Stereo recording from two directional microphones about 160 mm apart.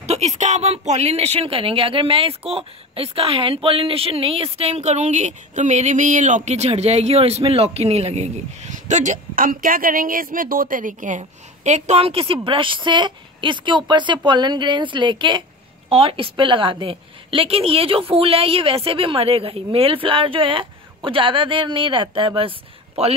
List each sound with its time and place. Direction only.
0.0 s speech: 45° right (ahead or behind)